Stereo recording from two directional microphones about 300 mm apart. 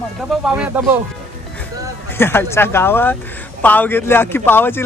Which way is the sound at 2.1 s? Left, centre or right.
Centre.